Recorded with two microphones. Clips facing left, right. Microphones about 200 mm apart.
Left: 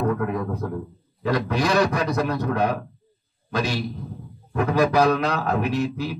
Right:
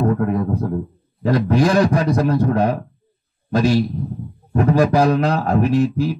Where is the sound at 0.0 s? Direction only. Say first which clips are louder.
Right 5 dB; 35° right (ahead or behind).